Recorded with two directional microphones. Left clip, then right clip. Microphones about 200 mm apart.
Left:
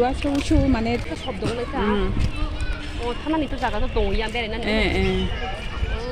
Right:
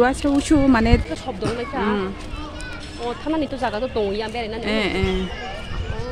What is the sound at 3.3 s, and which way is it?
Speech, 55° right (ahead or behind).